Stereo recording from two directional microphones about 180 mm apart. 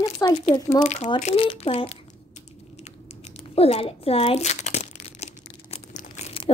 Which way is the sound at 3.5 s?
35° left (ahead or behind).